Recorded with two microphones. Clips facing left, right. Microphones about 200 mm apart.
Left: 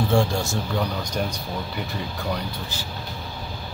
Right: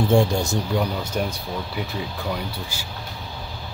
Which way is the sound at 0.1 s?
20° right (ahead or behind).